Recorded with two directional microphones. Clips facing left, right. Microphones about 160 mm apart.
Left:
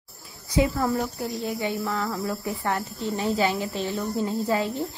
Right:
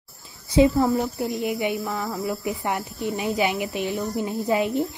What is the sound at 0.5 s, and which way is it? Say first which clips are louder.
A woman's voice: right 5 dB; 25° right (ahead or behind).